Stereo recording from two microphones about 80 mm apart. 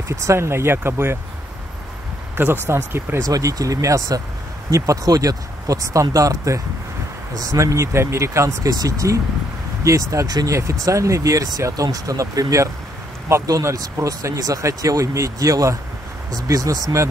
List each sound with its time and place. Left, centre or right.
0.1 s speech: right
2.3 s speech: right
3.2 s speech: right
10.5 s speech: right